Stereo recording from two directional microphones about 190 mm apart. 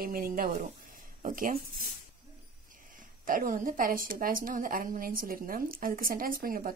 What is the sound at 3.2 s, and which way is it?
Speech, 45° right (ahead or behind).